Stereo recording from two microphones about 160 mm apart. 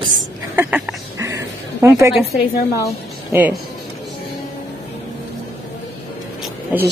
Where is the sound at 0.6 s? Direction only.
10° right (ahead or behind).